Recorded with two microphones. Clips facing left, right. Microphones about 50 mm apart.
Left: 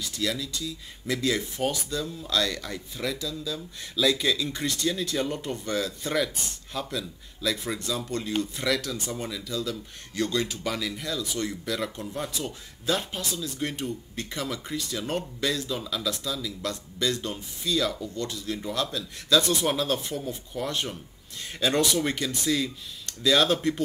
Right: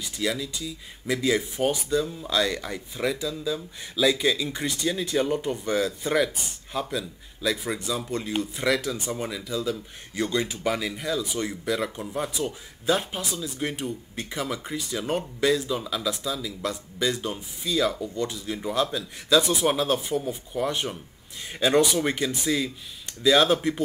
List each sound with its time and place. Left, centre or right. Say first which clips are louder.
0.0 s speech: right 2 dB; centre